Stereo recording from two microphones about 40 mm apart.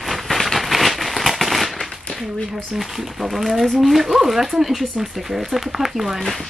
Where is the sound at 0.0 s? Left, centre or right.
Centre.